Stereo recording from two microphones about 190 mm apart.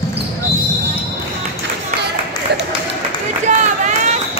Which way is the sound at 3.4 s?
40° right (ahead or behind).